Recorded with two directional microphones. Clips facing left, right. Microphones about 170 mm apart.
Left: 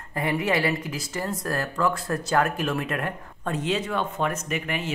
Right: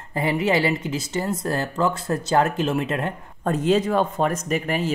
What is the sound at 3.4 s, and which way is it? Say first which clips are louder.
Speech: right 7 dB; 40° right (ahead or behind).